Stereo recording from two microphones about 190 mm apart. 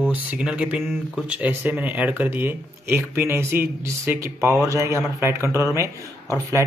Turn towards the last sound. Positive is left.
turn(degrees=-15)  # may be behind; listen again after turning